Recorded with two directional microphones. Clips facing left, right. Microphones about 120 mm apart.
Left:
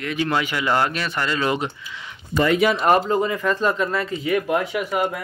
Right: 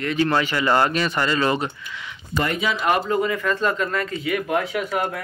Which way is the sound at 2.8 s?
35° left (ahead or behind).